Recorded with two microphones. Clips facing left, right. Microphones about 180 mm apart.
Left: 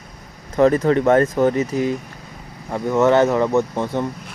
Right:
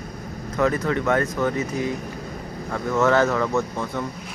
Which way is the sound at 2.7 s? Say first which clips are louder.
Left 4 dB; 20° left (ahead or behind).